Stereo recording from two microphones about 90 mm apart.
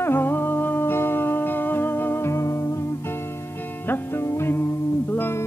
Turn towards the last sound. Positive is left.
turn(degrees=25)  # may be behind; listen again after turning